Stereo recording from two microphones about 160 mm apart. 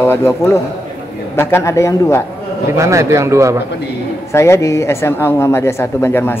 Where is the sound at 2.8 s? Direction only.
20° right (ahead or behind).